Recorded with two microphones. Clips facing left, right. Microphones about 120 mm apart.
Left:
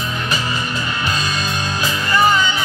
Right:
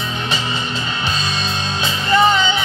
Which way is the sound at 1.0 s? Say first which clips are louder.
Left 1 dB; 25° right (ahead or behind).